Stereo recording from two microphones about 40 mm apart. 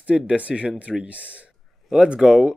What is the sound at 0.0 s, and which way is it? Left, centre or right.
Speech, right.